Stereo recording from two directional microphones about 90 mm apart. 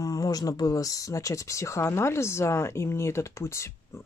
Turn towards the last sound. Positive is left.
turn(degrees=35)  # may be behind; listen again after turning